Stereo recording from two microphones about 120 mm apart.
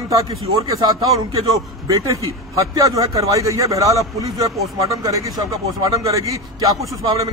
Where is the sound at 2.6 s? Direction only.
30° right (ahead or behind).